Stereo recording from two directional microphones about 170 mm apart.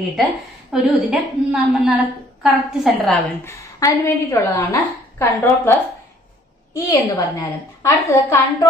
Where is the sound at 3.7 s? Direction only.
20° left (ahead or behind).